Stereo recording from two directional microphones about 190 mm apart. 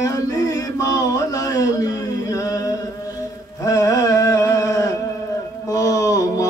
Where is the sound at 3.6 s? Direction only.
15° left (ahead or behind).